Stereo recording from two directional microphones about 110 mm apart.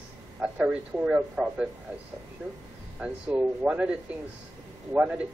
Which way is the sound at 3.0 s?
10° right (ahead or behind).